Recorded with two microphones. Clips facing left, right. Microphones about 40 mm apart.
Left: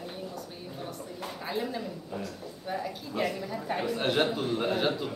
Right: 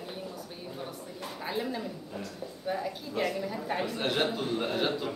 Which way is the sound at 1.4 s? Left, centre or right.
Centre.